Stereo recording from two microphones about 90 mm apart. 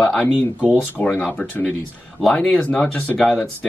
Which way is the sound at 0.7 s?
10° left (ahead or behind).